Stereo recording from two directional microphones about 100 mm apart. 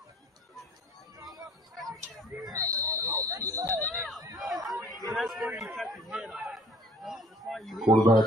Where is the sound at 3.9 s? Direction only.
Centre (ahead or behind).